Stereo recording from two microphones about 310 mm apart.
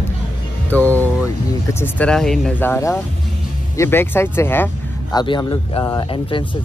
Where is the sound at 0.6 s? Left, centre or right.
Centre.